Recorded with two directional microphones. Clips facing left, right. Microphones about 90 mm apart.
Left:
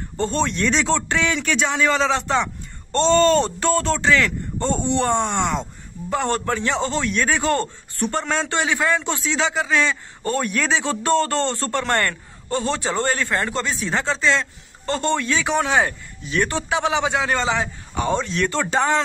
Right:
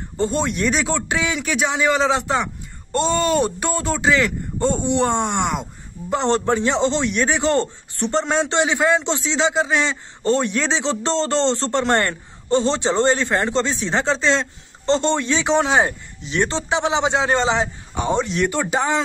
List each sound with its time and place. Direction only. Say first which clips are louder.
0.2 s speech: right 1 dB; 15° right (ahead or behind)